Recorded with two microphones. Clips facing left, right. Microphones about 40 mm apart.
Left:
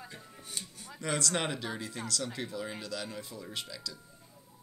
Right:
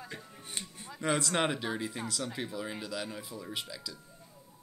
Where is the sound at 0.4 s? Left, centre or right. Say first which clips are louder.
Right 1 dB; right.